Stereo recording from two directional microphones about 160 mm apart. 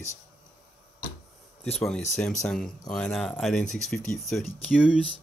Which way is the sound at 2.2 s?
5° left (ahead or behind).